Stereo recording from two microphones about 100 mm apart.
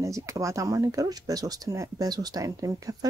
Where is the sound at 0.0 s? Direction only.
30° right (ahead or behind).